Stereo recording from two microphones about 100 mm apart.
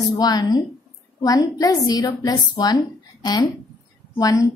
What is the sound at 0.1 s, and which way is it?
A woman's voice, 40° left (ahead or behind).